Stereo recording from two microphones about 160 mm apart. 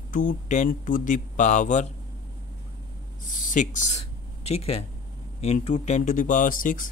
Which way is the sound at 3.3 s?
55° left (ahead or behind).